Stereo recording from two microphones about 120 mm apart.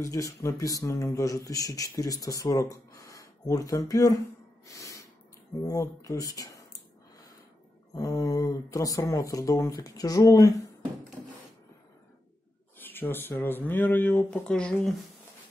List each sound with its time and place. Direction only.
0.0 s speech: 25° left (ahead or behind)
4.6 s snort: 25° left (ahead or behind)
5.6 s speech: 30° left (ahead or behind)
7.9 s speech: 30° left (ahead or behind)
12.8 s speech: 15° left (ahead or behind)